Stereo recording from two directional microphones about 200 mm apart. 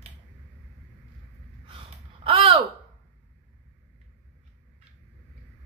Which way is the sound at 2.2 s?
30° right (ahead or behind).